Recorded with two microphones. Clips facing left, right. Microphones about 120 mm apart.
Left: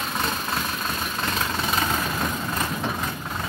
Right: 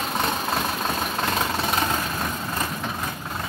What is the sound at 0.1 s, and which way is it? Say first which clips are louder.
Vehicle: right 3 dB; 50° right (ahead or behind).